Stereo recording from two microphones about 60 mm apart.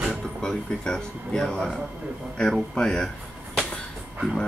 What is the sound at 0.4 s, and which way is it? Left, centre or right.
Speech, centre.